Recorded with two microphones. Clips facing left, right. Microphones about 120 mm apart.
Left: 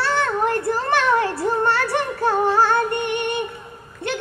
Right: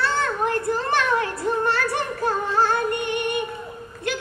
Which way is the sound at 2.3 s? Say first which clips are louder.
Left 5 dB; 70° left (ahead or behind).